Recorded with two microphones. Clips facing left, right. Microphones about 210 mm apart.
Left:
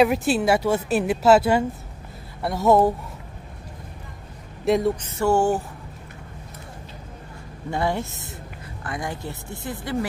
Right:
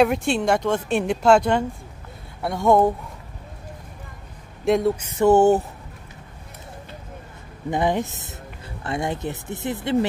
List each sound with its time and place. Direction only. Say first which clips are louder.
0.0 s speech: even; 5° left (ahead or behind)
4.6 s speech: right 1 dB; centre (ahead or behind)
5.0 s speech: right 5 dB; 15° right (ahead or behind)
7.7 s speech: right 3 dB; 20° right (ahead or behind)